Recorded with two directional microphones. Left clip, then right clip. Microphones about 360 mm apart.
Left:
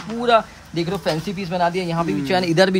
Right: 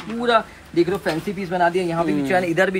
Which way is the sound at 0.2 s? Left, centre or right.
Centre.